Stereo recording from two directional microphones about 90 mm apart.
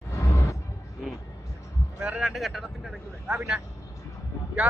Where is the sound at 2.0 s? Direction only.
10° right (ahead or behind).